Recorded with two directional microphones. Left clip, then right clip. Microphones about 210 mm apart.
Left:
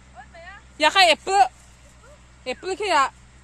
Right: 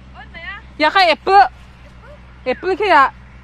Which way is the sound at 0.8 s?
15° right (ahead or behind).